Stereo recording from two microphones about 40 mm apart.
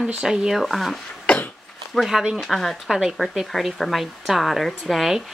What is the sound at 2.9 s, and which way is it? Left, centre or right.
Speech, centre.